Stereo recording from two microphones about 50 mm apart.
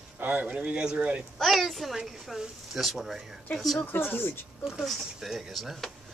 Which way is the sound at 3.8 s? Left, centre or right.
Left.